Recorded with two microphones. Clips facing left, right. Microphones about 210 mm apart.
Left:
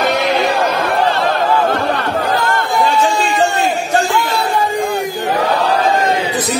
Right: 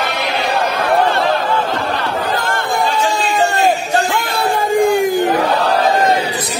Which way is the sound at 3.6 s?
45° right (ahead or behind).